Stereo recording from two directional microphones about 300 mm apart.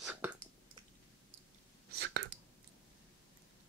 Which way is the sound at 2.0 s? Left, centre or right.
Right.